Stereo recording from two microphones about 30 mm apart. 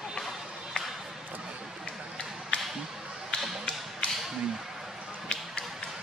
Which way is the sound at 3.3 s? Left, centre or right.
Left.